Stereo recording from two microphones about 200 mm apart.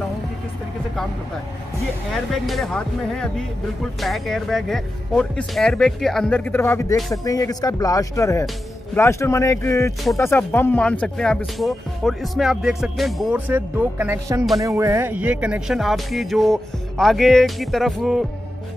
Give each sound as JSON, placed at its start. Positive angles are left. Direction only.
{"t": 2.1, "sound": "speech", "side_deg": 0}